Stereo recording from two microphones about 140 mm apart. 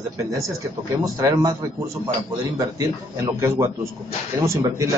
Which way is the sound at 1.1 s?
25° right (ahead or behind).